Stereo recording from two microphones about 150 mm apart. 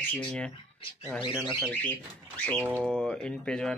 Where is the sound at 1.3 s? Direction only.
5° right (ahead or behind).